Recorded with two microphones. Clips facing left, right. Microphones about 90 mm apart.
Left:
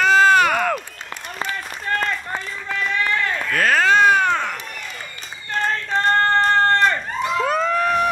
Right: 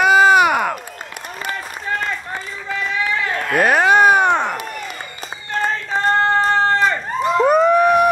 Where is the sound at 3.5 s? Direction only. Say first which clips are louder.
Right 3 dB; 15° right (ahead or behind).